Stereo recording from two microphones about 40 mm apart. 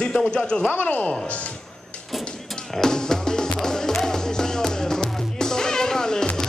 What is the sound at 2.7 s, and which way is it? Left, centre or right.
Music, centre.